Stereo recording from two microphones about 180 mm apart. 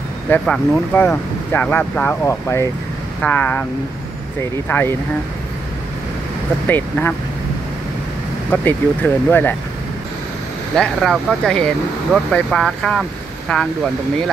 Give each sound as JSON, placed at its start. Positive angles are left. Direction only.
{"t": 0.3, "sound": "speech", "side_deg": 10}
{"t": 4.6, "sound": "speech", "side_deg": 10}
{"t": 6.7, "sound": "speech", "side_deg": 10}
{"t": 8.5, "sound": "speech", "side_deg": 10}
{"t": 10.8, "sound": "speech", "side_deg": 0}